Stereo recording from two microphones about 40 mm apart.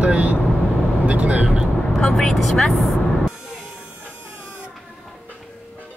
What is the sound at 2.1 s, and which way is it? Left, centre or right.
Speech, centre.